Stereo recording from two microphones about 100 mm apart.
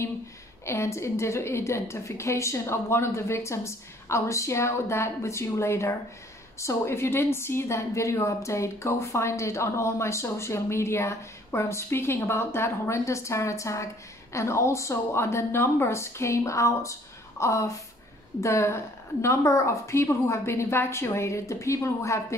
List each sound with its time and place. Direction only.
0.7 s a woman's voice: 30° left (ahead or behind)